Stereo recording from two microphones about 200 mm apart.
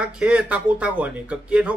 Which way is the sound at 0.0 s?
5° right (ahead or behind).